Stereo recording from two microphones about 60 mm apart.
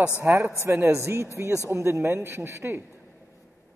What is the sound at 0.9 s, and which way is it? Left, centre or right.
Speech, right.